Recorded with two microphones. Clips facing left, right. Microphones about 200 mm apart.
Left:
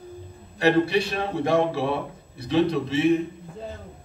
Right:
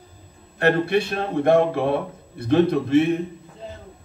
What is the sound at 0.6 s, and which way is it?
A man's voice, 55° right (ahead or behind).